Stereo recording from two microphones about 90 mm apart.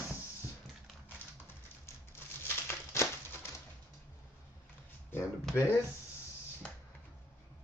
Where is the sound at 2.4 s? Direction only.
30° left (ahead or behind).